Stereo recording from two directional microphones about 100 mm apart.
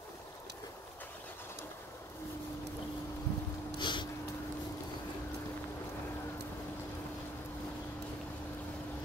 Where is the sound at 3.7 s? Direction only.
50° left (ahead or behind).